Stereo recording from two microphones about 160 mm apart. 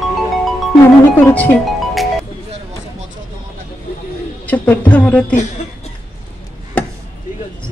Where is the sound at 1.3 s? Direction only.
10° left (ahead or behind).